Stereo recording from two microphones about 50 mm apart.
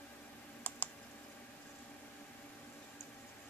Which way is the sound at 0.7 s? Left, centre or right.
Left.